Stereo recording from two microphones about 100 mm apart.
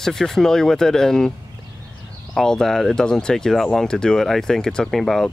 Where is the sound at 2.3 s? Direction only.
5° left (ahead or behind).